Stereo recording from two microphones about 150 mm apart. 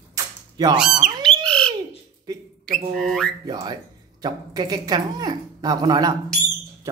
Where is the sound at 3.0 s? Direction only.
Centre (ahead or behind).